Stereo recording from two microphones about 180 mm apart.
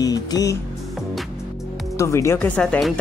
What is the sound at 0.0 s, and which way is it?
Speech, 20° left (ahead or behind).